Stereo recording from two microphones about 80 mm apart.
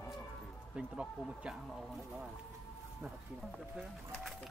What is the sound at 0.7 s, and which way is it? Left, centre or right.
Speech, centre.